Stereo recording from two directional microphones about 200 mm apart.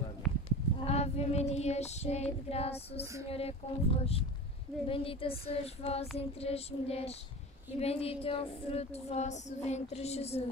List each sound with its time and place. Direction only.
0.2 s livestock: centre (ahead or behind)
0.8 s female singing: 30° left (ahead or behind)
3.3 s speech: 30° left (ahead or behind)
4.8 s female singing: 25° left (ahead or behind)